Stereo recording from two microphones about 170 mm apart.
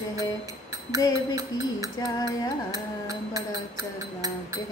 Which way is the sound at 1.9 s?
25° left (ahead or behind).